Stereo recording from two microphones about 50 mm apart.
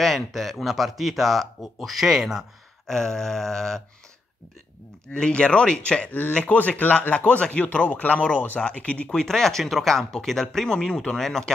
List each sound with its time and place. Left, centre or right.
0.0 s speech: centre
2.9 s speech: centre
5.1 s speech: centre
9.1 s speech: centre